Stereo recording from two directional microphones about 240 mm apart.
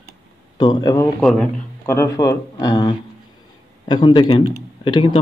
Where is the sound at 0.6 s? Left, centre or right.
Centre.